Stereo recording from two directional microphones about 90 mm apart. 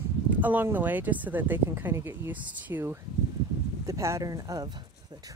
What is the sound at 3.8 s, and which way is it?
Speech, 35° right (ahead or behind).